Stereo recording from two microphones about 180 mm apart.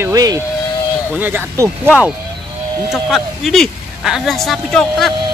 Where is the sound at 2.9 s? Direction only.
Centre (ahead or behind).